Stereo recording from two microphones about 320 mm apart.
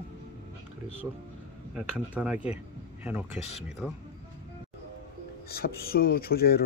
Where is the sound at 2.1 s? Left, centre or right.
Centre.